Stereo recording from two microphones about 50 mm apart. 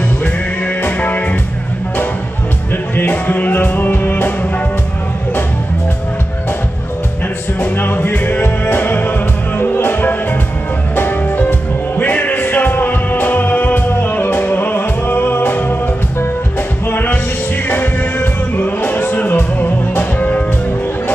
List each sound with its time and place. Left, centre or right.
0.8 s music: left
3.0 s music: left
7.7 s music: left
16.9 s music: left